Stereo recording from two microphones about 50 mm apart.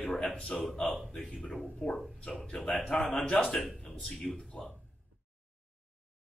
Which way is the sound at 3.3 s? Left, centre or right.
Left.